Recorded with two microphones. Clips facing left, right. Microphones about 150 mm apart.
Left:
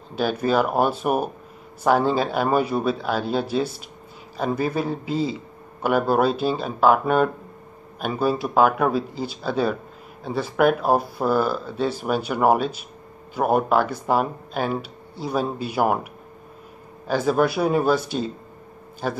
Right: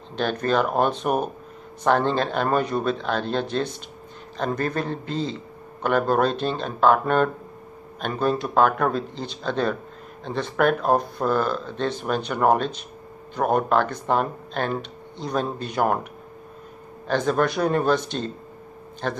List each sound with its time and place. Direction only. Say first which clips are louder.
0.1 s a man's voice: left 2 dB; 5° left (ahead or behind)
17.1 s a man's voice: left 2 dB; 5° left (ahead or behind)